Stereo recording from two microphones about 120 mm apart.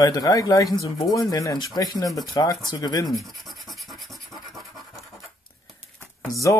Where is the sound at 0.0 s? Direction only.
30° left (ahead or behind).